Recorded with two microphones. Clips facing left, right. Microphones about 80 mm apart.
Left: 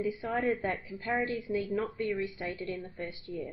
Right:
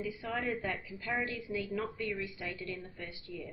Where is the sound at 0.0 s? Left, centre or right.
Left.